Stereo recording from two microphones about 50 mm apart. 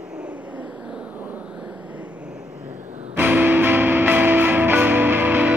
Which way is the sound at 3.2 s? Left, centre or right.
Right.